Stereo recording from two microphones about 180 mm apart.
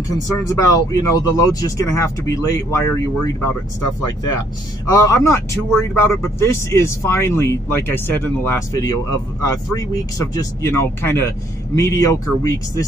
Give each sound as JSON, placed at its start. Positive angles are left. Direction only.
{"t": 0.5, "sound": "speech", "side_deg": 20}
{"t": 4.9, "sound": "speech", "side_deg": 15}